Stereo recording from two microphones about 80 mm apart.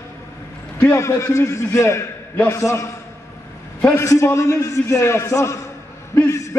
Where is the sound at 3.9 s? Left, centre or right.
Left.